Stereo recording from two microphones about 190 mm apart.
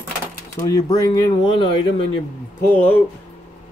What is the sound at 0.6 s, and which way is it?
Speech, 20° left (ahead or behind).